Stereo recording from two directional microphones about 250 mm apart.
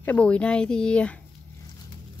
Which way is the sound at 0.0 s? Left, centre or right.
Centre.